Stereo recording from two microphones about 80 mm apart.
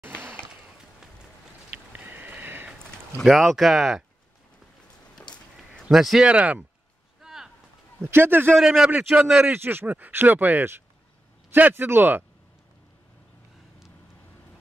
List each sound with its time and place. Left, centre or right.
1.9 s a sound: right
3.2 s speech: centre
5.3 s a sound: centre
5.9 s speech: centre
6.2 s a man's voice: centre
7.2 s a sound: centre
8.0 s speech: right
8.5 s speech: centre
8.8 s a man's voice: centre
9.4 s speech: right